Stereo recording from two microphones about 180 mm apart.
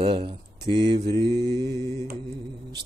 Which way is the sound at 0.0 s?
30° right (ahead or behind).